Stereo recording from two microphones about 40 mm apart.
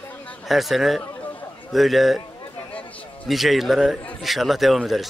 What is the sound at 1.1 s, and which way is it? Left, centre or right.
Chatter, left.